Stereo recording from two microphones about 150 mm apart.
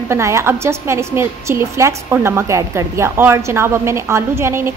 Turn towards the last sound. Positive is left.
turn(degrees=-15)  # may be behind; listen again after turning